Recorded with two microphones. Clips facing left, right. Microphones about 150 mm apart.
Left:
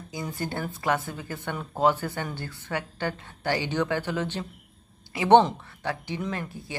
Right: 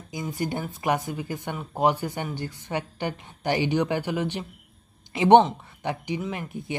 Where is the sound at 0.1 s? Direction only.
15° right (ahead or behind).